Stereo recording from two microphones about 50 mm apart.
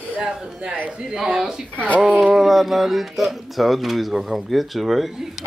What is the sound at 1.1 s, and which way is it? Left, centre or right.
Speech, centre.